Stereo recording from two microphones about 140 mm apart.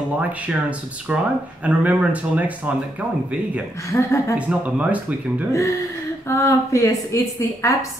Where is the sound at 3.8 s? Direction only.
20° left (ahead or behind).